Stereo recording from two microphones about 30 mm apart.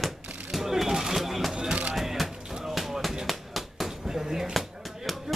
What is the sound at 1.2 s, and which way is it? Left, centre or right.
Music, centre.